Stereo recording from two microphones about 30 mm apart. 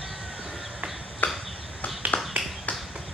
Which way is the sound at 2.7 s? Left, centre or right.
Left.